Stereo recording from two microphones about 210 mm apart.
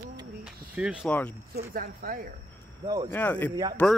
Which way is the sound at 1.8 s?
45° right (ahead or behind).